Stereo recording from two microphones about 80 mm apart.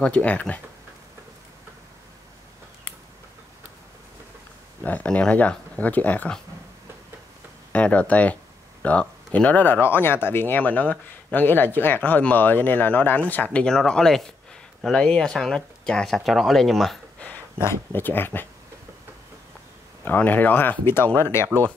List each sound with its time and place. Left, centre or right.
0.0 s speech: centre
4.8 s speech: centre
7.7 s speech: centre
17.6 s speech: left
20.1 s speech: left